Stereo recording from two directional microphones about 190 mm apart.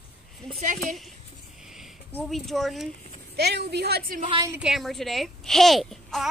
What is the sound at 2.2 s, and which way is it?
Speech, centre (ahead or behind).